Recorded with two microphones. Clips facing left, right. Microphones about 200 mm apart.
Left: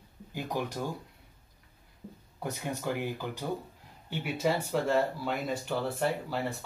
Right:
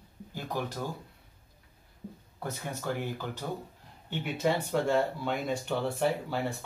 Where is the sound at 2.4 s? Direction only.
15° left (ahead or behind).